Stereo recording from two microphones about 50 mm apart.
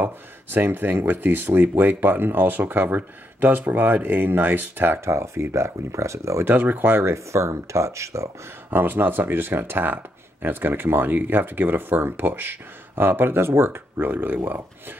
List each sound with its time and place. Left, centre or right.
0.0 s speech: right
5.0 s speech: right
6.4 s speech: right
7.0 s speech: right
8.6 s speech: right